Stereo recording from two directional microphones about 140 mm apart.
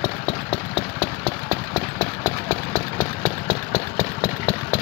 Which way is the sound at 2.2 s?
Centre (ahead or behind).